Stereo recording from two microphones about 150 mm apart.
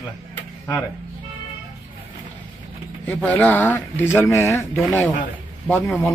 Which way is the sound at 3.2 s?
10° left (ahead or behind).